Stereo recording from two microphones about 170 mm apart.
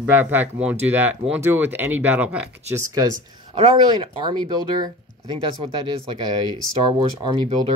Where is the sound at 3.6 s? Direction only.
30° right (ahead or behind).